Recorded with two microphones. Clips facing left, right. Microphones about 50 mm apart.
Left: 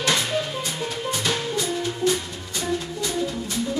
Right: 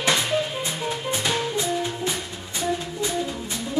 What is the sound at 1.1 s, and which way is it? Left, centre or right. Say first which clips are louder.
Music: right 1 dB; centre.